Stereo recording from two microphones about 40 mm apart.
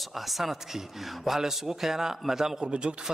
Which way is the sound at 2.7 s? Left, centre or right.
Right.